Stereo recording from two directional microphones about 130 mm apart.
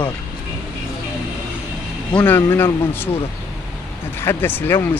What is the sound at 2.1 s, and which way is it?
Speech, 10° left (ahead or behind).